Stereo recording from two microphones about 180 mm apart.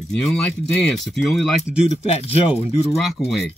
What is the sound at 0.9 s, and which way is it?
Speech, centre (ahead or behind).